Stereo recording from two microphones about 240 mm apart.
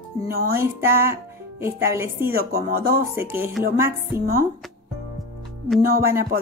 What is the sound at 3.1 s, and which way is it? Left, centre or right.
Speech, centre.